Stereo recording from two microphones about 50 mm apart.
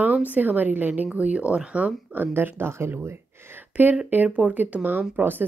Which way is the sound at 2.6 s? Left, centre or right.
Right.